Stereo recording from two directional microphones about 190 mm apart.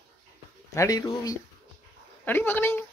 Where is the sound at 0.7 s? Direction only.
15° left (ahead or behind).